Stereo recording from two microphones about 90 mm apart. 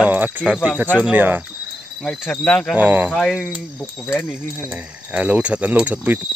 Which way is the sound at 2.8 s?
20° right (ahead or behind).